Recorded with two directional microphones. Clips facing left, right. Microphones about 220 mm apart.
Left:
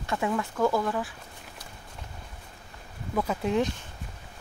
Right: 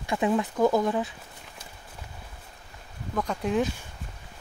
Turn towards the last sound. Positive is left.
turn(degrees=-5)  # may be behind; listen again after turning